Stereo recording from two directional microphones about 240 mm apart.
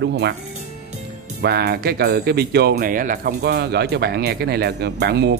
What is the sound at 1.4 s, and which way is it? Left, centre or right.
Speech, right.